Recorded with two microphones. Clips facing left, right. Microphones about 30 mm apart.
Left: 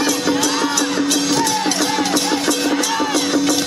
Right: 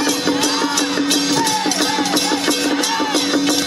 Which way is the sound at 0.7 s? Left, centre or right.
Right.